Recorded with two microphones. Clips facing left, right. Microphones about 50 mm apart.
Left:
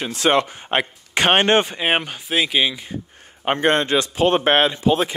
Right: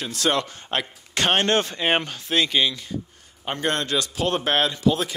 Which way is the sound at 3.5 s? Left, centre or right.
Left.